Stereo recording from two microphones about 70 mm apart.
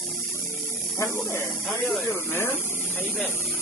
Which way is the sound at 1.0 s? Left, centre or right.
Left.